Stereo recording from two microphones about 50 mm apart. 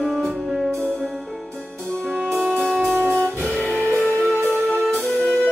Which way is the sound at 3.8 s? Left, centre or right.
Left.